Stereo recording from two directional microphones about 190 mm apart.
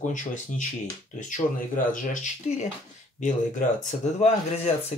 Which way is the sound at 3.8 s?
35° left (ahead or behind).